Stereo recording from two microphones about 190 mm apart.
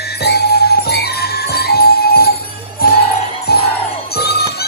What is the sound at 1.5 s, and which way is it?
Jingle bell, 55° left (ahead or behind).